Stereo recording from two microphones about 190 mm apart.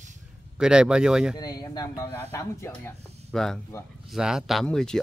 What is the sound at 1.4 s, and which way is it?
Speech, 20° left (ahead or behind).